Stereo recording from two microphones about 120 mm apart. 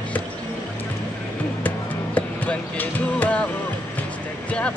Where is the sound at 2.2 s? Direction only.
15° left (ahead or behind).